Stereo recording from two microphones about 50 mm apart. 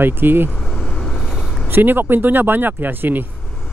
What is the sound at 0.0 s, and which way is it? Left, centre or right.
Speech, right.